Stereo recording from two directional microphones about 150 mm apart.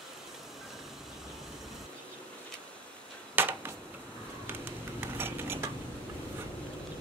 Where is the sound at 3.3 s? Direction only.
15° right (ahead or behind).